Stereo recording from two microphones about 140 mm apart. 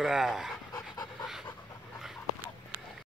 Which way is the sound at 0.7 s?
30° left (ahead or behind).